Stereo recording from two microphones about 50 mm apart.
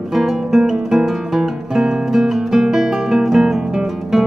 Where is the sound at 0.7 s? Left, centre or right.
Centre.